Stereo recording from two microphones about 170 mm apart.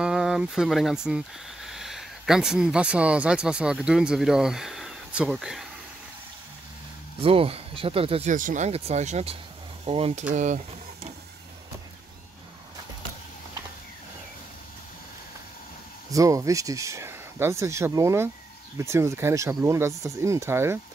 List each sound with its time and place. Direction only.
0.0 s speech: 5° right (ahead or behind)
7.2 s speech: 35° right (ahead or behind)
8.3 s speech: 50° right (ahead or behind); by 10.2 s 35° right (ahead or behind)
10.3 s speech: 45° right (ahead or behind)
16.1 s speech: 20° right (ahead or behind)